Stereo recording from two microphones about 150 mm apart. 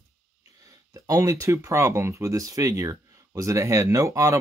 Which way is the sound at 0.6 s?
20° right (ahead or behind).